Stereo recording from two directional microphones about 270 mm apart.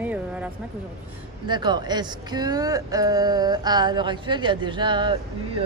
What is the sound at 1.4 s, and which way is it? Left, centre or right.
Speech, centre.